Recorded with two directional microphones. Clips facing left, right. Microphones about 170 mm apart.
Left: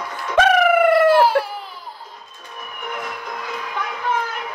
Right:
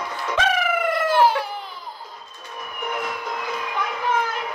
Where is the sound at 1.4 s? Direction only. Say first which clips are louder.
Left 1 dB; 5° left (ahead or behind).